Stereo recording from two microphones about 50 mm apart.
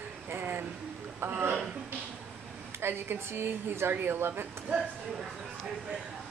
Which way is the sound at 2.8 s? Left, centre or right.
Right.